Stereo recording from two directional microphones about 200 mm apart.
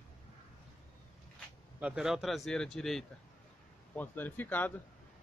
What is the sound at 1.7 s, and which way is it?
A man's voice, 5° right (ahead or behind).